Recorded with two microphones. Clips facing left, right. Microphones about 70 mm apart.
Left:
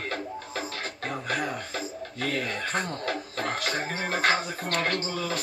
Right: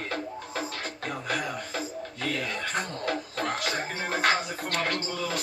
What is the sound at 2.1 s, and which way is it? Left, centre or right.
Speech, left.